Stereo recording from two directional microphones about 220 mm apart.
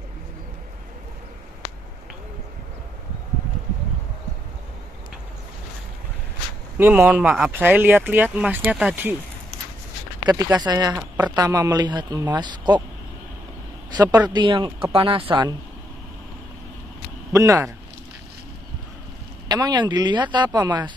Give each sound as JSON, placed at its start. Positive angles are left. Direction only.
{"t": 6.8, "sound": "speech", "side_deg": -10}
{"t": 10.6, "sound": "speech", "side_deg": -15}
{"t": 13.8, "sound": "speech", "side_deg": -15}
{"t": 17.3, "sound": "speech", "side_deg": -15}
{"t": 19.4, "sound": "speech", "side_deg": -20}